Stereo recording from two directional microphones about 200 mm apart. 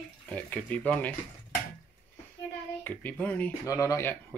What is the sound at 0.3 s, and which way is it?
Speech, 5° left (ahead or behind).